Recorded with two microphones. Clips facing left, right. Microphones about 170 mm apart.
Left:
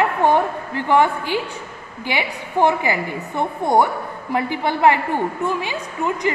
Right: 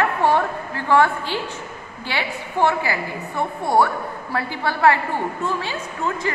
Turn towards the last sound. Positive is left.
turn(degrees=15)  # may be behind; listen again after turning